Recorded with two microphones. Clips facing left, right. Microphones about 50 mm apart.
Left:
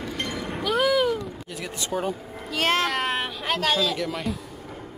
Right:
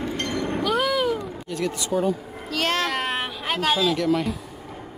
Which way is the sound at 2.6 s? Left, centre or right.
Left.